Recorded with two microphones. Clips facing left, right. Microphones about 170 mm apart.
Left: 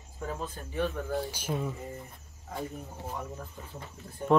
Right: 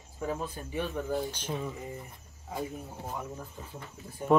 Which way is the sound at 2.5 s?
10° right (ahead or behind).